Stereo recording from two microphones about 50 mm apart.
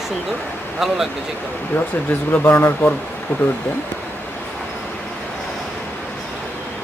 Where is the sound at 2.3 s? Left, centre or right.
Left.